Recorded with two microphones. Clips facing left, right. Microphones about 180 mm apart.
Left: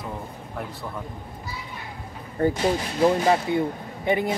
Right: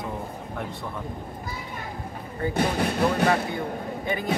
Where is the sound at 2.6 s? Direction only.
60° right (ahead or behind).